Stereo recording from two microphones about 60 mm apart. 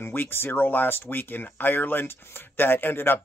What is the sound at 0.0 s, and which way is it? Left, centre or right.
Speech, left.